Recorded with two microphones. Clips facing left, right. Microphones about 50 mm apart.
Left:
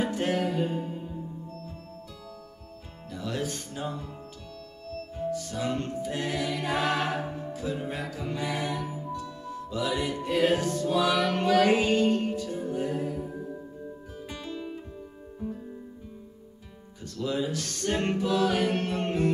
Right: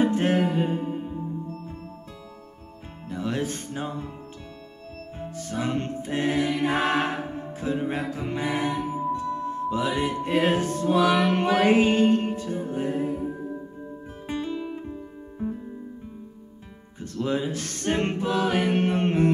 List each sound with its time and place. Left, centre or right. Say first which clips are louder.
0.0 s music: right 5 dB; right
3.1 s music: right 4 dB; right
14.5 s guitar: right 5 dB; centre
14.8 s music: right 6 dB; right
17.0 s music: right 3 dB; right